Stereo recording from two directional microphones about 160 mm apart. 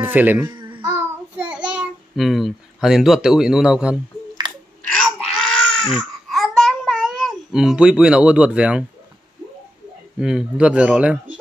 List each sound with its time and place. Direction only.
0.0 s speech: 10° right (ahead or behind)
0.5 s babbling: 30° right (ahead or behind)
0.8 s child singing: 10° right (ahead or behind)
4.8 s baby cry: centre (ahead or behind)
10.2 s speech: 5° right (ahead or behind)